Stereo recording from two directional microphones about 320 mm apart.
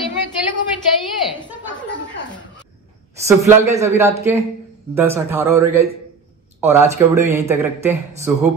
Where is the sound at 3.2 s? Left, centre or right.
Centre.